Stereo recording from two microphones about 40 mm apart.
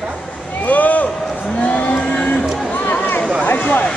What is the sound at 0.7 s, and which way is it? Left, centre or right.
Speech, left.